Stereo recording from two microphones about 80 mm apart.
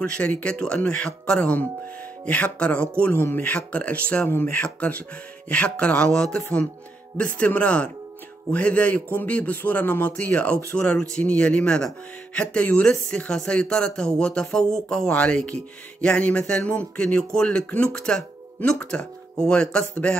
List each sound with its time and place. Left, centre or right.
0.0 s a man's voice: centre